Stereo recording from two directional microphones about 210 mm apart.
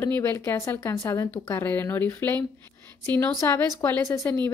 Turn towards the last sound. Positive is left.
turn(degrees=15)  # may be behind; listen again after turning